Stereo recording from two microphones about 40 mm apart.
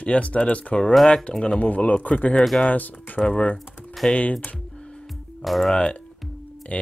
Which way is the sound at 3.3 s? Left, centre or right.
Left.